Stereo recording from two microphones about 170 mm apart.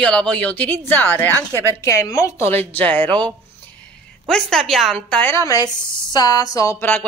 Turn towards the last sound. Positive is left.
turn(degrees=15)  # may be behind; listen again after turning